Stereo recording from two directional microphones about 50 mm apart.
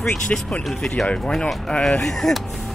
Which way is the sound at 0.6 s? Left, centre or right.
Centre.